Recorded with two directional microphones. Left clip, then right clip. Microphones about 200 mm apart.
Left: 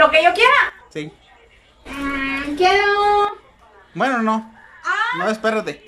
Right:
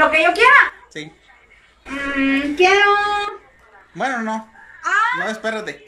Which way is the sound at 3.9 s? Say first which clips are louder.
Left 3 dB; 5° left (ahead or behind).